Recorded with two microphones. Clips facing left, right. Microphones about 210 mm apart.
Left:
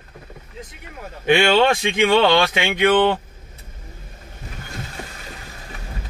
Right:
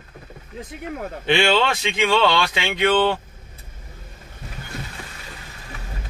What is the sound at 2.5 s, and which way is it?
Speech, 20° left (ahead or behind).